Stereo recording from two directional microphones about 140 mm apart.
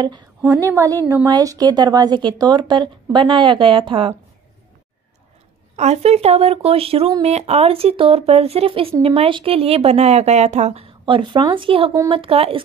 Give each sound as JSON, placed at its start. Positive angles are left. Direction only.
{"t": 0.0, "sound": "a woman's voice", "side_deg": -30}
{"t": 5.8, "sound": "speech", "side_deg": -50}